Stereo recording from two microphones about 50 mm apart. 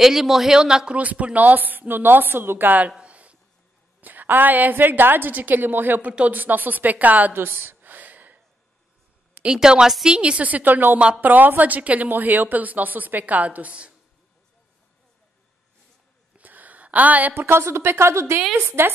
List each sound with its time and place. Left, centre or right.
0.0 s a man's voice: centre
0.9 s a woman's voice: right
3.0 s a sound: right
4.0 s a woman's voice: right
7.3 s a woman's voice: right
7.8 s a sound: right
9.5 s a woman's voice: centre
16.3 s a sound: right
17.3 s a woman's voice: right
18.8 s speech: right